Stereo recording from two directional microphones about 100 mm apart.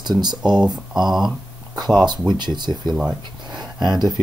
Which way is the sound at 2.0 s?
45° right (ahead or behind).